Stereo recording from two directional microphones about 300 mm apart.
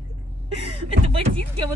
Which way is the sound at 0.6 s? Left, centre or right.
Centre.